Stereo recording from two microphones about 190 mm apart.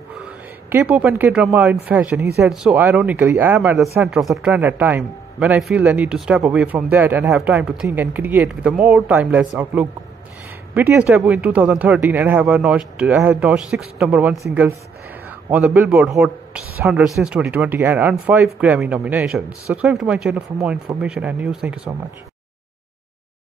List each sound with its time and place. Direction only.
0.7 s a man's voice: 10° right (ahead or behind)
3.9 s a man's voice: 10° right (ahead or behind)